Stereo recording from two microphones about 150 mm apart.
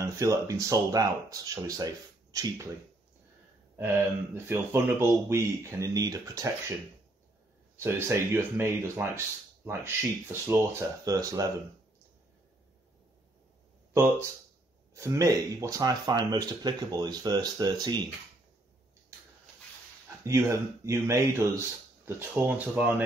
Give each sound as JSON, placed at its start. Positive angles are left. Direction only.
{"t": 0.0, "sound": "speech", "side_deg": -20}
{"t": 4.5, "sound": "speech", "side_deg": -15}
{"t": 7.7, "sound": "speech", "side_deg": -15}
{"t": 13.9, "sound": "speech", "side_deg": -20}
{"t": 20.2, "sound": "speech", "side_deg": -20}